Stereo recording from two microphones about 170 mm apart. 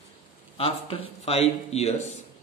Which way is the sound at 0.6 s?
35° left (ahead or behind).